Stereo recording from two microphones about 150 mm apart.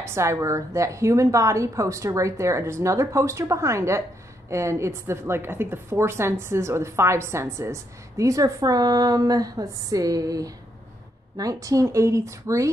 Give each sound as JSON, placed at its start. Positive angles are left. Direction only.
{"t": 0.0, "sound": "a woman's voice", "side_deg": -15}